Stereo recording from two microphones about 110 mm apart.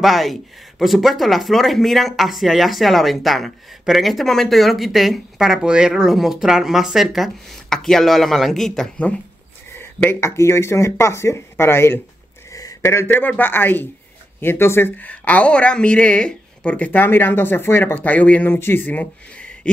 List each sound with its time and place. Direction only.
0.0 s speech: centre (ahead or behind)
9.8 s a woman's voice: 20° left (ahead or behind)